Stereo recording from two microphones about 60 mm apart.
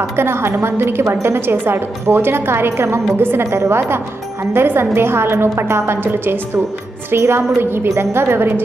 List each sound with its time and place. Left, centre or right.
0.1 s a woman's voice: right
3.4 s a woman's voice: right